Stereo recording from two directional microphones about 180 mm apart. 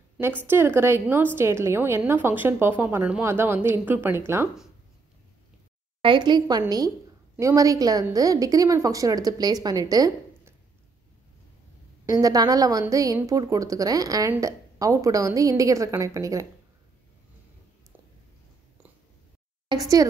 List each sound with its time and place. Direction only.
0.4 s a woman's voice: 10° right (ahead or behind)
6.0 s a woman's voice: 25° right (ahead or behind)
12.1 s a woman's voice: 20° right (ahead or behind)
19.7 s a woman's voice: 20° right (ahead or behind)